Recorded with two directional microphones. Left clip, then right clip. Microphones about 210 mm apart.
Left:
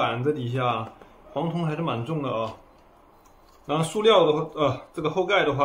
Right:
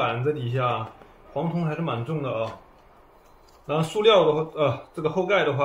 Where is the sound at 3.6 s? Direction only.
10° left (ahead or behind).